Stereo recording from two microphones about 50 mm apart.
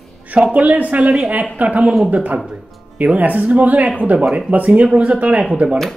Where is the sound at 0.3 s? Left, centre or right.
Right.